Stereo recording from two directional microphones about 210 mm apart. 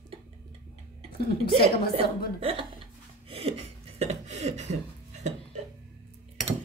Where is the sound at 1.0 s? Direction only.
45° left (ahead or behind).